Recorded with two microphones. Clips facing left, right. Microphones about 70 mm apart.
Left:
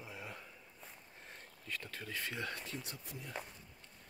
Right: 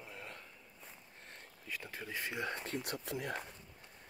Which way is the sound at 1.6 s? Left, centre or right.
Centre.